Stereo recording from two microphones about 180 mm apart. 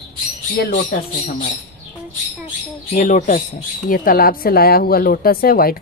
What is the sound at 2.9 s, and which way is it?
Speech, 45° left (ahead or behind).